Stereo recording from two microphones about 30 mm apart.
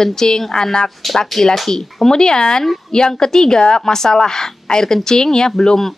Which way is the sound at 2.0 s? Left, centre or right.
Left.